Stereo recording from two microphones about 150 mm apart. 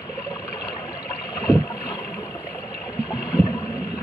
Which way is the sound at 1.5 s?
15° left (ahead or behind).